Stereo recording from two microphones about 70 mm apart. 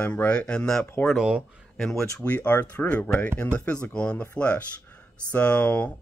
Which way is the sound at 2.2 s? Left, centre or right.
Left.